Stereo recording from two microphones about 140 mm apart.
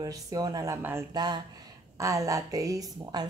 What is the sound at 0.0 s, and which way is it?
A woman's voice, 25° right (ahead or behind).